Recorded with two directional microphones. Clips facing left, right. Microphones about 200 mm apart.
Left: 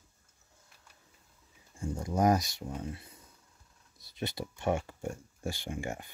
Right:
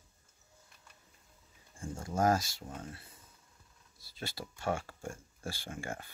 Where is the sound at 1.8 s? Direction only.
15° left (ahead or behind).